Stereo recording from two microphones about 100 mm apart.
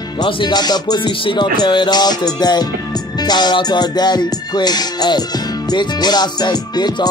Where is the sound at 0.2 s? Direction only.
45° left (ahead or behind).